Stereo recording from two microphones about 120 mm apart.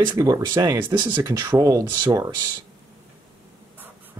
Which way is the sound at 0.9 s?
40° right (ahead or behind).